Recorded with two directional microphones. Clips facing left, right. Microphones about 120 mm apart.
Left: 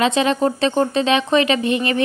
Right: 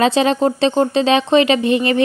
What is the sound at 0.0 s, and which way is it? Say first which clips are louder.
Speech: right 3 dB; 35° right (ahead or behind).